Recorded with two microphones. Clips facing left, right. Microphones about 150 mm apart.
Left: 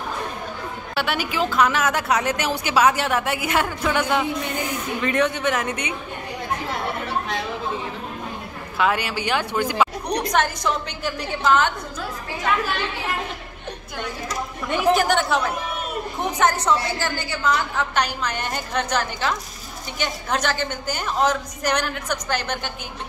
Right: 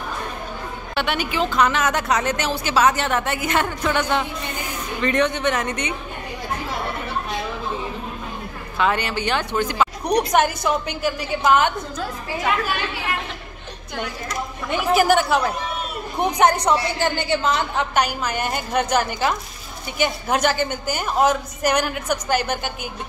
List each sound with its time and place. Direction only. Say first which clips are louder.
0.9 s a woman's voice: right 1 dB; 5° left (ahead or behind)
8.7 s a woman's voice: right 1 dB; 5° left (ahead or behind)
10.0 s a woman's voice: right 4 dB; 10° right (ahead or behind)
15.0 s speech: right 3 dB; 5° right (ahead or behind)
16.2 s a woman's voice: right 4 dB; 15° right (ahead or behind)
17.9 s a woman's voice: right 3 dB; 10° right (ahead or behind)